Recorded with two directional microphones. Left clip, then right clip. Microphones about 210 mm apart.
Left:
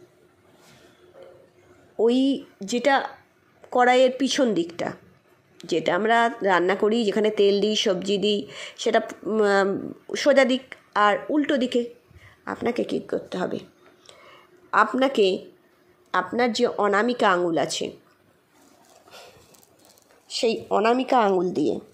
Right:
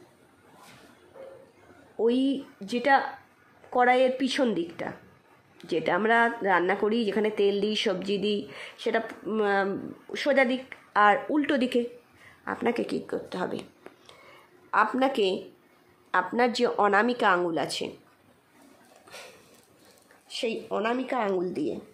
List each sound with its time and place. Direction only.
2.0 s a woman's voice: 10° left (ahead or behind)
15.0 s speech: 15° left (ahead or behind)
19.0 s a sound: 10° right (ahead or behind)
20.2 s speech: 15° left (ahead or behind)